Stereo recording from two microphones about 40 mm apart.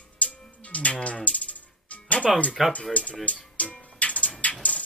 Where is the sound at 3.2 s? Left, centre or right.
Left.